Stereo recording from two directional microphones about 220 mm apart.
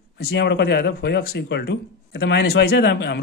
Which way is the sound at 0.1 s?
50° left (ahead or behind).